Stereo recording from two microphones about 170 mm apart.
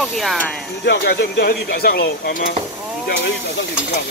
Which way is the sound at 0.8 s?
75° left (ahead or behind).